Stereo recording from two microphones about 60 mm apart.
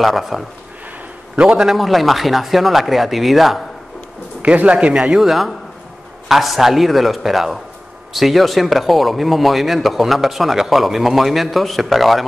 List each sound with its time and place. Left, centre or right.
0.0 s speech: centre
1.3 s speech: centre
4.4 s speech: right; by 12.3 s centre